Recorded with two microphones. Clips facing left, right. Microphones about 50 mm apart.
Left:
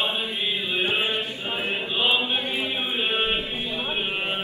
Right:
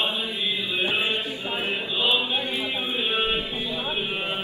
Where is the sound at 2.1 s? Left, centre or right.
Left.